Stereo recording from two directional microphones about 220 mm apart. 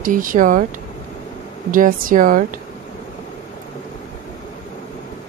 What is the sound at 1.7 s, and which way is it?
Speech, 40° right (ahead or behind).